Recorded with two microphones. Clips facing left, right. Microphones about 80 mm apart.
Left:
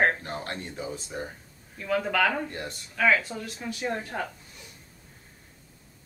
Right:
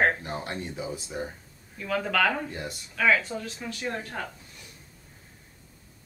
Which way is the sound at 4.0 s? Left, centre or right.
Left.